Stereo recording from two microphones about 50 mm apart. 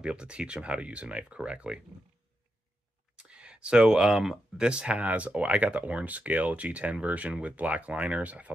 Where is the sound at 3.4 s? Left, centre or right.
Centre.